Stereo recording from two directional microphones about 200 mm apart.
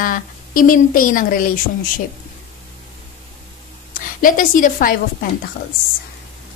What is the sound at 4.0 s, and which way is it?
A woman's voice, 40° left (ahead or behind).